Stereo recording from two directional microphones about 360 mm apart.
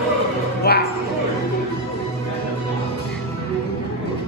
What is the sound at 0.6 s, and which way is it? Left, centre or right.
Speech, left.